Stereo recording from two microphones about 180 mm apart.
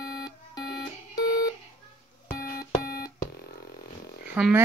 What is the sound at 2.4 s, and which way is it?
Beep, 55° left (ahead or behind).